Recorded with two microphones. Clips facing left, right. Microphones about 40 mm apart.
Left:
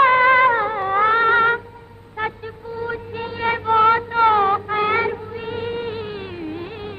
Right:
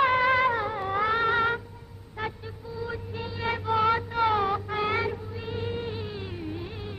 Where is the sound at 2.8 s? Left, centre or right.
Left.